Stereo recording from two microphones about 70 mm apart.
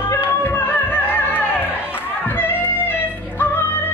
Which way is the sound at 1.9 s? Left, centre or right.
Left.